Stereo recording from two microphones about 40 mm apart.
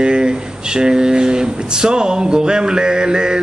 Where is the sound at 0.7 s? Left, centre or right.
Centre.